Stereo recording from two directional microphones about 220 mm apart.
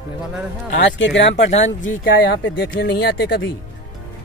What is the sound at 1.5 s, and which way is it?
Speech, 30° left (ahead or behind).